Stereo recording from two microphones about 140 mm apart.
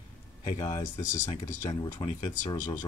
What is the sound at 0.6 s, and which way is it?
Speech, 25° left (ahead or behind).